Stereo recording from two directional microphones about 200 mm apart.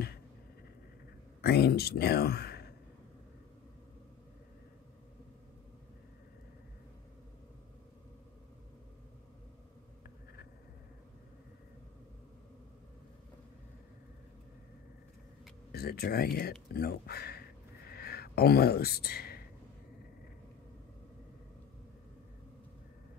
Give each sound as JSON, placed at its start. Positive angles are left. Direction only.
{"t": 1.4, "sound": "speech", "side_deg": 50}
{"t": 15.7, "sound": "speech", "side_deg": 50}
{"t": 16.7, "sound": "a sound", "side_deg": 50}